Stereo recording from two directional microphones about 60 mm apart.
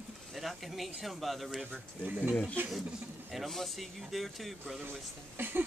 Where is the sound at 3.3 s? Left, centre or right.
Centre.